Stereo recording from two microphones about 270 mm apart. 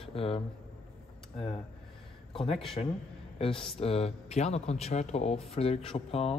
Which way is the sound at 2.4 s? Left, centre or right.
Left.